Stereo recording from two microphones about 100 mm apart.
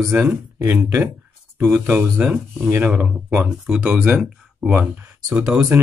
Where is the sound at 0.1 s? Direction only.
20° right (ahead or behind).